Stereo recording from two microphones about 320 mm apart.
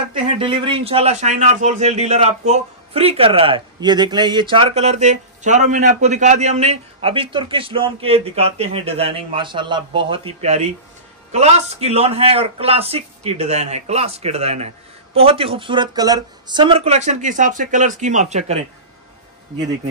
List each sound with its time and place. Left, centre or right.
0.1 s a man's voice: centre